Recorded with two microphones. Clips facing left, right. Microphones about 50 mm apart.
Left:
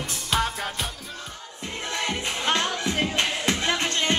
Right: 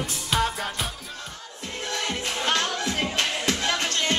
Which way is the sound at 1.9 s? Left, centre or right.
Left.